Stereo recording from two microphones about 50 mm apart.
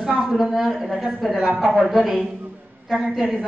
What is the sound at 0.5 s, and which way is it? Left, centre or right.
A woman's voice, centre.